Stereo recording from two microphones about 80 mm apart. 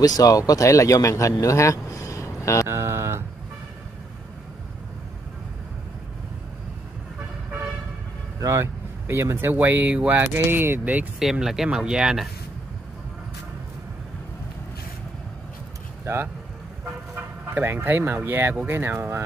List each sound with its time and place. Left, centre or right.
0.0 s speech: left
1.4 s music: left
2.7 s a sound: right
8.4 s speech: right
11.1 s speech: centre
17.1 s speech: right